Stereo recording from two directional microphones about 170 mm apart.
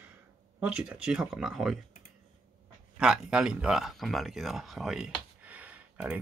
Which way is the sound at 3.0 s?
5° right (ahead or behind).